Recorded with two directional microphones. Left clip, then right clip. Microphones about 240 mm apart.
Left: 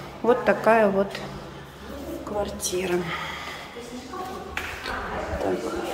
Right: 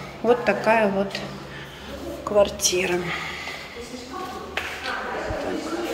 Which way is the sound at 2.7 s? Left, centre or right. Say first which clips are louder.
Right 3 dB; centre.